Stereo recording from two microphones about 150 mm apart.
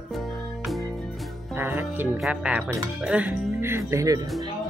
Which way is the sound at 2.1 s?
5° right (ahead or behind).